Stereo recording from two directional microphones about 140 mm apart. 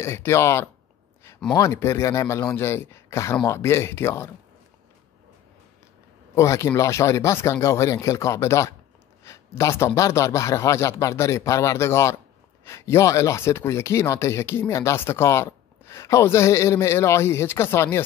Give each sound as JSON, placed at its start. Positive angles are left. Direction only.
{"t": 0.0, "sound": "speech", "side_deg": 20}
{"t": 6.3, "sound": "speech", "side_deg": 20}